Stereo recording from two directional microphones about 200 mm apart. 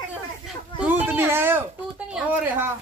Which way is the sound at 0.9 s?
10° right (ahead or behind).